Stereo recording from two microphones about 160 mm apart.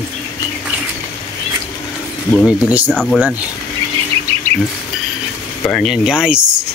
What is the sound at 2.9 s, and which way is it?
Speech, 5° left (ahead or behind).